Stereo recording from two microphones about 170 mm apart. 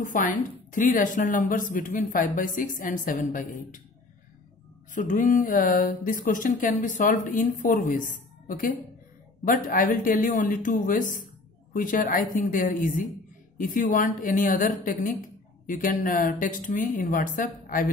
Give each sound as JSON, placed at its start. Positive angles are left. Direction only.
{"t": 0.0, "sound": "a woman's voice", "side_deg": 50}
{"t": 4.9, "sound": "a woman's voice", "side_deg": 50}